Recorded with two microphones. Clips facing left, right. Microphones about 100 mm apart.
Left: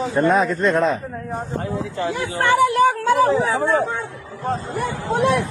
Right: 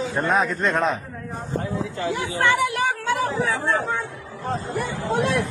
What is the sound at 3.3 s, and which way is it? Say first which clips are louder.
Speech: left 5 dB; 90° left.